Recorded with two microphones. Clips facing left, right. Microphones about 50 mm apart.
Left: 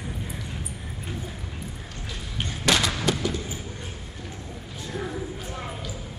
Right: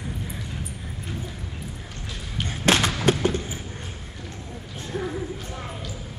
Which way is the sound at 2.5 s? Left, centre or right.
Right.